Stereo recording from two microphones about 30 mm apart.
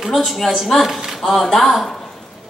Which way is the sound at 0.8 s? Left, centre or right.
Centre.